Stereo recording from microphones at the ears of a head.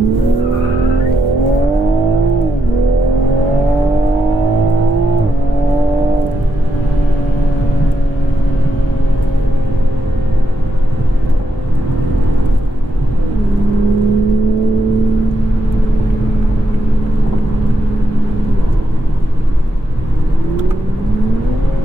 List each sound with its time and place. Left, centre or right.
0.0 s vehicle: right
4.1 s vehicle: right
13.7 s vehicle: right
20.5 s vehicle: right